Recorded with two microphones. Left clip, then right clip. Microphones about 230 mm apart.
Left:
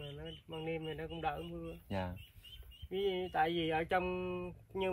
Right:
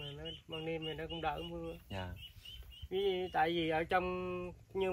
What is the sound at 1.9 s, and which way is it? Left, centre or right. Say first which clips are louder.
Speech: left 4 dB; left.